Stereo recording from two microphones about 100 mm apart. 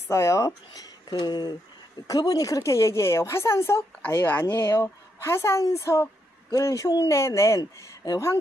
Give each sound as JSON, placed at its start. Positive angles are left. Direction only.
{"t": 0.1, "sound": "speech", "side_deg": 30}